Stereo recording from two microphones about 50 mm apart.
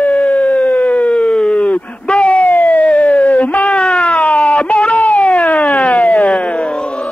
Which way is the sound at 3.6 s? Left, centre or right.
Left.